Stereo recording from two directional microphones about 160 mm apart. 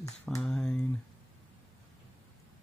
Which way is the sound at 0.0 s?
20° left (ahead or behind).